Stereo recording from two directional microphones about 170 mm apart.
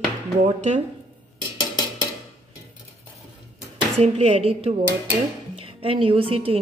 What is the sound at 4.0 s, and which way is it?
A woman's voice, 35° right (ahead or behind).